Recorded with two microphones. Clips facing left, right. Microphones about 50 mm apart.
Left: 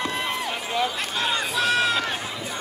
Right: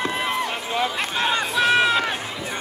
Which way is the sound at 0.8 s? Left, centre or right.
Right.